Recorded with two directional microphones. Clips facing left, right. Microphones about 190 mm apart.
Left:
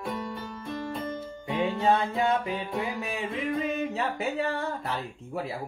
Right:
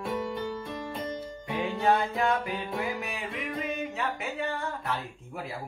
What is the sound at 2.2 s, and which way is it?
Music, 20° left (ahead or behind).